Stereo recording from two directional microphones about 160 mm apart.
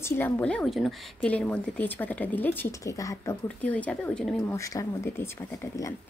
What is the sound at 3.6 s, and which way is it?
Speech, 10° left (ahead or behind).